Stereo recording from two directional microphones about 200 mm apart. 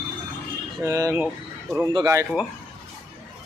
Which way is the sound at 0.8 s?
15° right (ahead or behind).